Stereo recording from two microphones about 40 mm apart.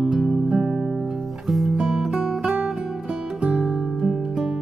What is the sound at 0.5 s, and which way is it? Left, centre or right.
Music, centre.